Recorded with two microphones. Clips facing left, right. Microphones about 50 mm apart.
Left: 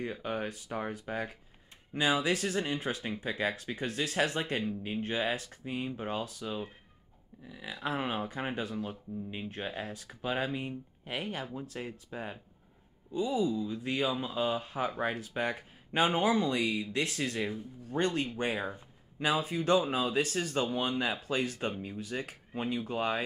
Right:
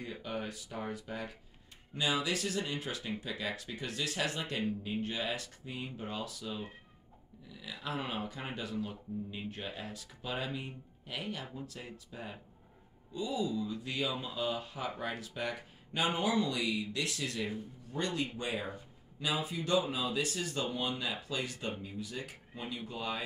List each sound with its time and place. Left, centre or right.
0.0 s speech: left